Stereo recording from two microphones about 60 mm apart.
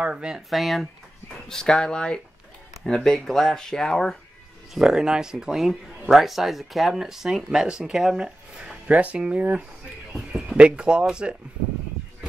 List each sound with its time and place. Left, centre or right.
0.0 s speech: centre
0.5 s speech: centre
1.5 s speech: centre
4.7 s speech: centre
8.5 s speech: centre
10.1 s speech: centre